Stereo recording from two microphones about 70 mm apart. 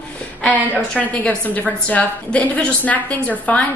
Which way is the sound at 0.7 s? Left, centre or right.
Centre.